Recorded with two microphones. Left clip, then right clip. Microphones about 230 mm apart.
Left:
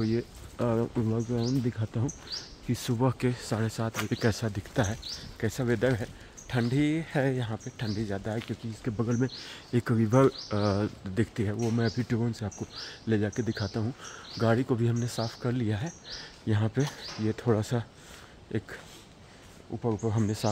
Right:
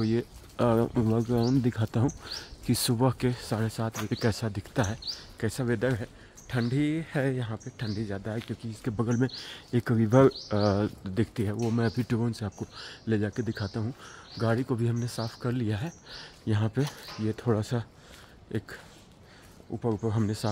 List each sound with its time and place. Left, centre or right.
0.0 s speech: centre
12.7 s speech: centre
19.8 s speech: centre